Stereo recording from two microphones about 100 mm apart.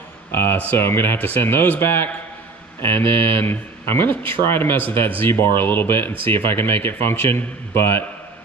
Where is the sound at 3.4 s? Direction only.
25° left (ahead or behind).